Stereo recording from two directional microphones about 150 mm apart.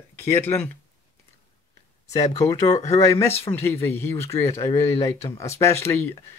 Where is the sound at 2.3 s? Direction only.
20° left (ahead or behind).